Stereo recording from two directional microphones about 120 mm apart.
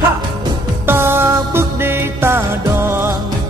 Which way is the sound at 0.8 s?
20° right (ahead or behind).